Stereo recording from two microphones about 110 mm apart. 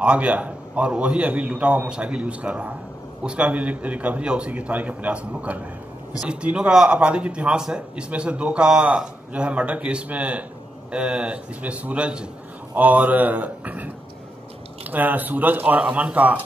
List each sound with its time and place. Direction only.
0.0 s speech: 10° right (ahead or behind)